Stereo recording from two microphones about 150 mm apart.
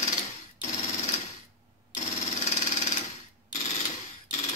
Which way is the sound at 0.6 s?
45° left (ahead or behind).